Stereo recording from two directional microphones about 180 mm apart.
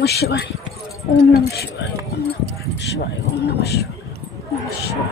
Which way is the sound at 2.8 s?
75° left (ahead or behind).